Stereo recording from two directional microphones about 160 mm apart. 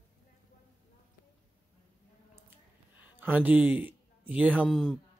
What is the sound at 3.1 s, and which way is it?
Speech, 10° right (ahead or behind).